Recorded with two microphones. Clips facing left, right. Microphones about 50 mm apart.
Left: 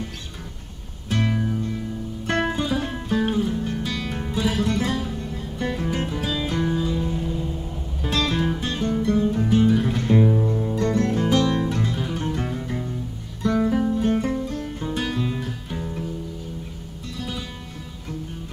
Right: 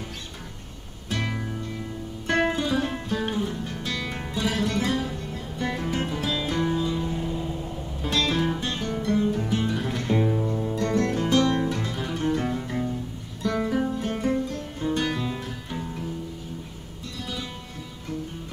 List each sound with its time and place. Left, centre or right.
1.0 s music: centre
2.2 s music: centre
5.6 s music: centre
8.0 s music: centre
13.5 s guitar: centre
14.0 s music: centre